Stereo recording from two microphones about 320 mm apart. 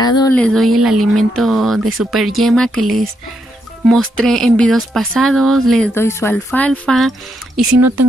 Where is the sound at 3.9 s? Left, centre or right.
Centre.